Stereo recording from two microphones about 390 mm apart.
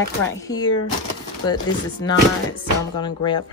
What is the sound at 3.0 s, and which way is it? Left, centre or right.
Speech, centre.